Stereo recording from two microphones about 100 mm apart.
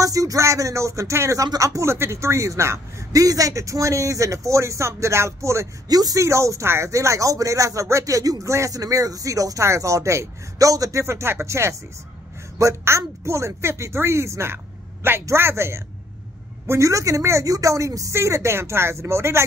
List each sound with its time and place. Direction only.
0.0 s speech: 35° right (ahead or behind)